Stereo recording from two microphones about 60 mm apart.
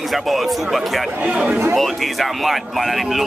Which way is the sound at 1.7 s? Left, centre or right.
Centre.